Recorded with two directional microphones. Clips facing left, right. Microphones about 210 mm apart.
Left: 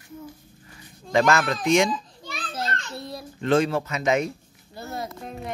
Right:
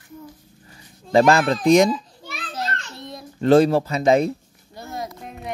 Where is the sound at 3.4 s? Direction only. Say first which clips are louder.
Right 7 dB; 35° right (ahead or behind).